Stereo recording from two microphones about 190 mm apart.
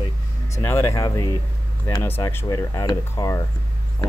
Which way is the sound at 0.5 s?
15° left (ahead or behind).